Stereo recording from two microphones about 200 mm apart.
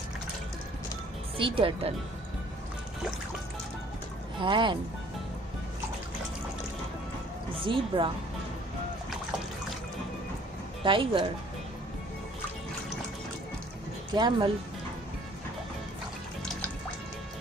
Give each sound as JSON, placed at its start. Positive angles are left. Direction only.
{"t": 1.4, "sound": "speech", "side_deg": -25}
{"t": 4.4, "sound": "speech", "side_deg": -25}
{"t": 7.6, "sound": "speech", "side_deg": -25}
{"t": 10.8, "sound": "speech", "side_deg": -25}
{"t": 14.1, "sound": "speech", "side_deg": -25}